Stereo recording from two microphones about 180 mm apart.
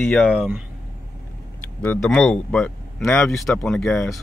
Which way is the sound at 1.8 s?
5° left (ahead or behind).